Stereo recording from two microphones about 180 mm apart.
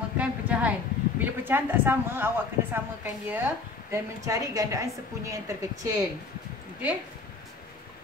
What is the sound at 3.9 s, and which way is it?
A woman's voice, 20° right (ahead or behind).